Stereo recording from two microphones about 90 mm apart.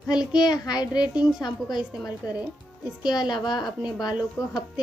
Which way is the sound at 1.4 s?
55° left (ahead or behind).